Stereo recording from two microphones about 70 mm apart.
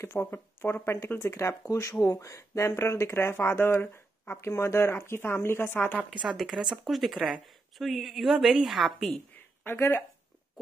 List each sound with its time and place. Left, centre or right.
0.0 s speech: left
6.0 s a woman's voice: centre
9.7 s speech: left